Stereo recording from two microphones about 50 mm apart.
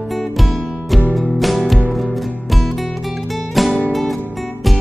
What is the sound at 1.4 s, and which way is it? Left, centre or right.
Music, centre.